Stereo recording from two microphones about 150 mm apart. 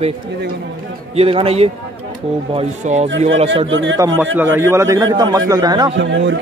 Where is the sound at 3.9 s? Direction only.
20° right (ahead or behind).